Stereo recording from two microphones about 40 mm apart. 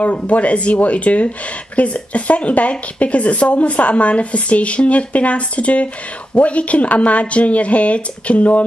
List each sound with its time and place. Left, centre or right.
0.1 s speech: left